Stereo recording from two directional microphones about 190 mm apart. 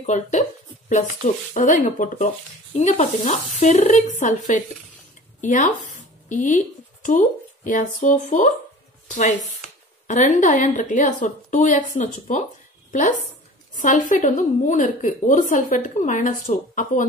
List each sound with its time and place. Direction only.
0.0 s a woman's voice: 40° left (ahead or behind)
10.0 s a woman's voice: 40° left (ahead or behind)
13.7 s a woman's voice: 45° left (ahead or behind)